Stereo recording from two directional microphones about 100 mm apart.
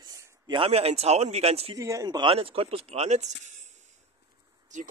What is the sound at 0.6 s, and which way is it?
Speech, 90° right.